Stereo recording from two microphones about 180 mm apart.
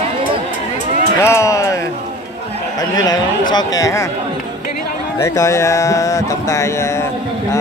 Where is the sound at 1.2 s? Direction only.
15° left (ahead or behind).